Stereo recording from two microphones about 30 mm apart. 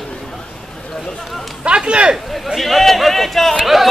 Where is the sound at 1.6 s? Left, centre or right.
Right.